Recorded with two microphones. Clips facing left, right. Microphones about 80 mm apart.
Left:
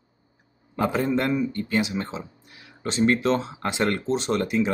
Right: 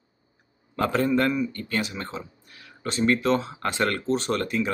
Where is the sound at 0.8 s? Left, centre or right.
Centre.